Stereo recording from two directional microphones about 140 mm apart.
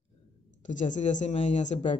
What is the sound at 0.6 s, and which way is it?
Speech, 60° left (ahead or behind).